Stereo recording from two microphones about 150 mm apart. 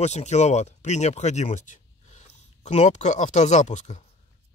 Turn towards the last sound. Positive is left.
turn(degrees=50)  # may be behind; listen again after turning